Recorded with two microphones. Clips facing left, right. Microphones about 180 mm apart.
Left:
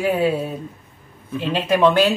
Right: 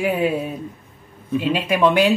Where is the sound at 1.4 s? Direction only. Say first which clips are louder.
Left 2 dB; 10° right (ahead or behind).